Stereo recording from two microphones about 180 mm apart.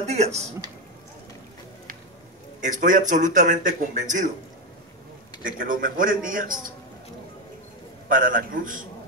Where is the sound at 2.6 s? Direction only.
45° right (ahead or behind).